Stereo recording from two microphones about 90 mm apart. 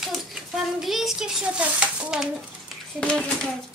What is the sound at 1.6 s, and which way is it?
Speech, 15° right (ahead or behind).